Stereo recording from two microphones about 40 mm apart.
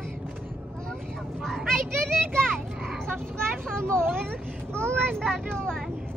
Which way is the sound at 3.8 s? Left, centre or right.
Right.